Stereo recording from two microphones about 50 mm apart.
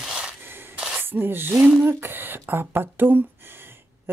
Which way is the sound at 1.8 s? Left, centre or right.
Right.